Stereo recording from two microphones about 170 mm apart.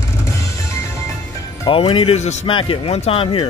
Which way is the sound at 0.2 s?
20° left (ahead or behind).